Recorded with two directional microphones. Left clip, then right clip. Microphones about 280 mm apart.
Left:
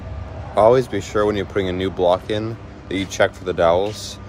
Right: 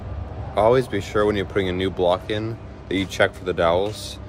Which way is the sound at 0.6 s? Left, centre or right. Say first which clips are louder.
Left 4 dB; centre.